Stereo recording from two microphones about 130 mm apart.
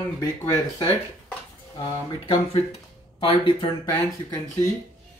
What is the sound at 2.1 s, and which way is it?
Speech, 45° left (ahead or behind).